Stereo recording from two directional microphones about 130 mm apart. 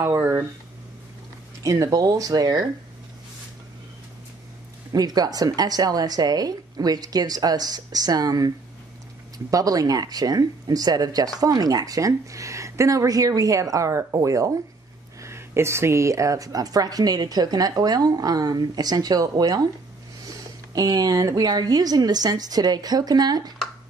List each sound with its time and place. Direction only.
0.0 s a woman's voice: 20° right (ahead or behind)
1.6 s a woman's voice: 25° right (ahead or behind)
4.9 s a woman's voice: 30° right (ahead or behind)